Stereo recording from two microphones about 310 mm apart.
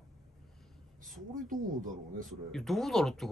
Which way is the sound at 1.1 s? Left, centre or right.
Right.